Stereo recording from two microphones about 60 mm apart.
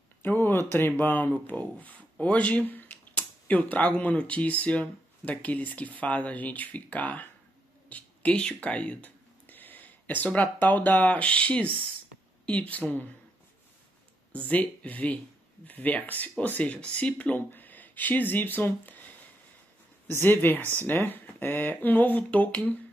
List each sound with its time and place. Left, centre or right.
0.2 s speech: left
7.9 s a sound: left
10.2 s speech: left
14.3 s speech: left
20.1 s speech: left